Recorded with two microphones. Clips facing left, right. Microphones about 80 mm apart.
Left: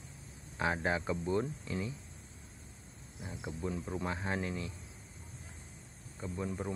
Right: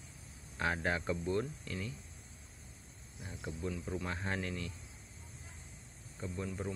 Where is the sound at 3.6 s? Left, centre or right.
Left.